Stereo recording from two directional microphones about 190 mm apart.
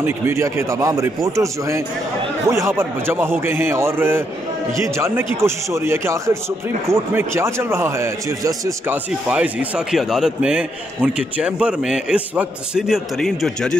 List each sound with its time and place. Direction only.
0.0 s a man's voice: 15° right (ahead or behind); by 13.7 s 5° left (ahead or behind)